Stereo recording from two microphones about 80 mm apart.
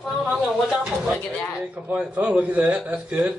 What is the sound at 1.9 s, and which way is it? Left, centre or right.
A man's voice, centre.